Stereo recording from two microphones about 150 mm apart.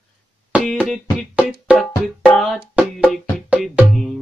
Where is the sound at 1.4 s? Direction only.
5° right (ahead or behind).